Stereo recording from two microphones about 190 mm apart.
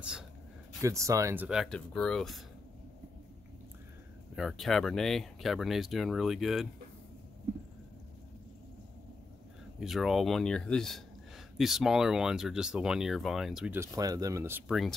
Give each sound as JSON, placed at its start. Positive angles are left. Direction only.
{"t": 0.7, "sound": "speech", "side_deg": -15}
{"t": 4.4, "sound": "speech", "side_deg": 0}
{"t": 9.8, "sound": "speech", "side_deg": 0}
{"t": 13.7, "sound": "speech", "side_deg": -20}
{"t": 14.7, "sound": "speech", "side_deg": 0}